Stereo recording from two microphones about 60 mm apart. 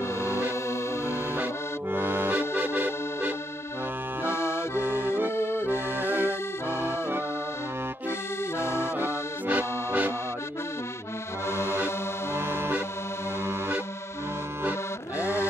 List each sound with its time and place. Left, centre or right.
1.3 s accordion: right
4.4 s accordion: left
4.7 s accordion: right
5.3 s accordion: left
5.7 s accordion: right
8.8 s accordion: right
11.6 s music: right
12.4 s accordion: right
14.6 s accordion: right